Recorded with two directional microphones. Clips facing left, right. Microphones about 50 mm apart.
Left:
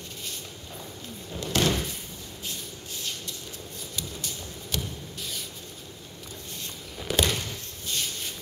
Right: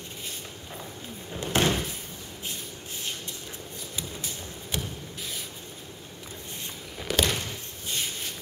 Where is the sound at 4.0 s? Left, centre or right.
Centre.